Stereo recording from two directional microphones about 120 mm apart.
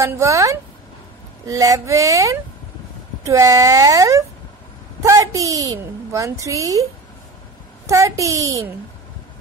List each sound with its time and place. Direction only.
0.0 s a woman's voice: 25° right (ahead or behind)